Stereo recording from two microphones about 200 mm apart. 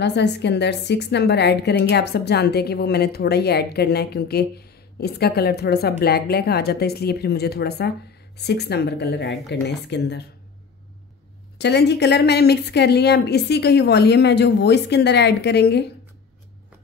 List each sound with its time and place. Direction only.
0.0 s a woman's voice: 60° left (ahead or behind)
11.5 s a woman's voice: 55° left (ahead or behind)